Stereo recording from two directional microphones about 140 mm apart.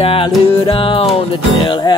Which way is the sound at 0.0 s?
40° left (ahead or behind).